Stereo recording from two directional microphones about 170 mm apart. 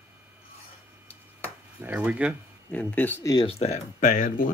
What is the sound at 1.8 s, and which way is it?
Speech, 10° right (ahead or behind).